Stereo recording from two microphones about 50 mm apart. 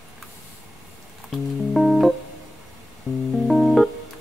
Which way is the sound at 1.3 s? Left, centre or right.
Centre.